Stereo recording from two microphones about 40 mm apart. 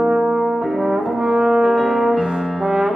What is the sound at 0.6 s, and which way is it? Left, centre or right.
Brass instrument, centre.